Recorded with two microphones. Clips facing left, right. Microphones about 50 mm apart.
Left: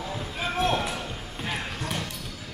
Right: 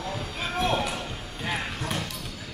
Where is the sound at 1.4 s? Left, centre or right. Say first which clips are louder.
Right 2 dB; centre.